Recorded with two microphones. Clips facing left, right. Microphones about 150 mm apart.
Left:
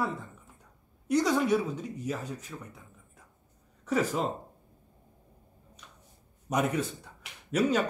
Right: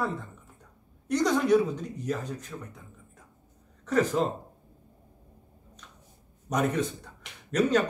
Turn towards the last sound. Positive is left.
turn(degrees=5)  # may be behind; listen again after turning